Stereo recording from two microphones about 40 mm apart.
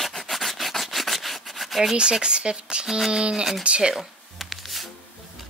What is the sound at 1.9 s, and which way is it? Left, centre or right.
Speech, right.